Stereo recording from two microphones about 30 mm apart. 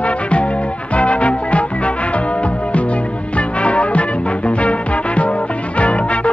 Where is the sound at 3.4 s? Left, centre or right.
Left.